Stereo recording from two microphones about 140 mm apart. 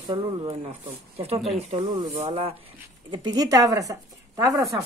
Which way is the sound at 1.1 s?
45° right (ahead or behind).